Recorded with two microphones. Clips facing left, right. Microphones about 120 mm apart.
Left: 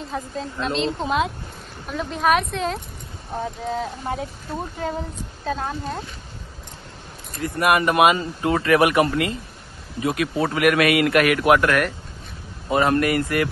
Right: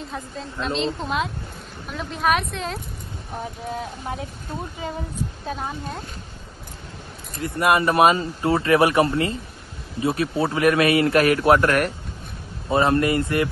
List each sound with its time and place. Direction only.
0.0 s speech: centre (ahead or behind)
7.3 s speech: 25° right (ahead or behind)